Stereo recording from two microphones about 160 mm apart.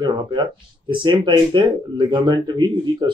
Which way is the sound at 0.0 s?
25° right (ahead or behind).